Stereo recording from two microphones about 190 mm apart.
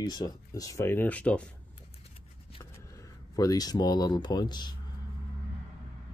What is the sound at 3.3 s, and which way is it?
Speech, 20° left (ahead or behind).